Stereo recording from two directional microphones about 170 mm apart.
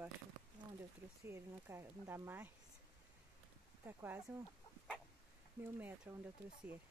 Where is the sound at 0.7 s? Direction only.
15° right (ahead or behind).